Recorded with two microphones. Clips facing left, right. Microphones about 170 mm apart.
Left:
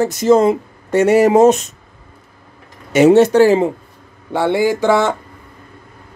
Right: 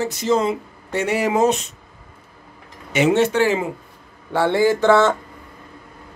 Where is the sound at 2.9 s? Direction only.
40° left (ahead or behind).